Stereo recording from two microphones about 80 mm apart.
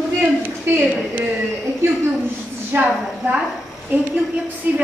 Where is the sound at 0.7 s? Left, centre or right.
Right.